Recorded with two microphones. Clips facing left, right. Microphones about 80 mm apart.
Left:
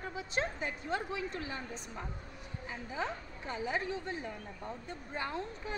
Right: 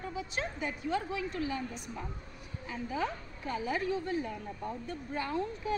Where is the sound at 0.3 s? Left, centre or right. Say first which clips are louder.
Left 4 dB; left.